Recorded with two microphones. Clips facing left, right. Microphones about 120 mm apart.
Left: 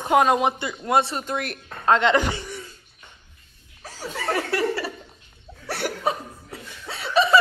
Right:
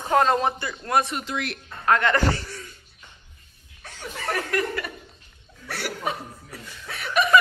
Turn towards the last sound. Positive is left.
turn(degrees=25)  # may be behind; listen again after turning